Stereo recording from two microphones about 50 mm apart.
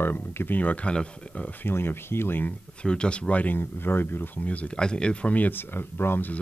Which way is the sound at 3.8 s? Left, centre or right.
Left.